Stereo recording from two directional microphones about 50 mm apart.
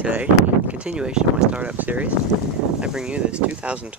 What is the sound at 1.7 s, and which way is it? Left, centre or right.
Speech, right.